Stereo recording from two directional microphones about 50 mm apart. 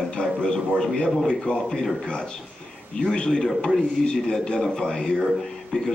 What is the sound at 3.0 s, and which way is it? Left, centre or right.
A man's voice, centre.